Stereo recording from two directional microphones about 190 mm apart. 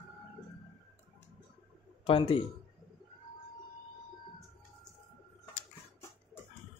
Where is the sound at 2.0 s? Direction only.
30° left (ahead or behind).